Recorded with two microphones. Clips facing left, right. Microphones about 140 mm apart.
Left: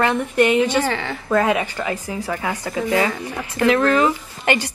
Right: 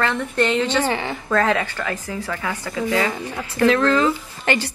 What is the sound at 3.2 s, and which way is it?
A woman's voice, 15° left (ahead or behind).